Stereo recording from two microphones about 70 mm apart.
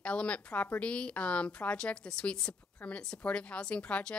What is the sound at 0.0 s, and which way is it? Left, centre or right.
A woman's voice, centre.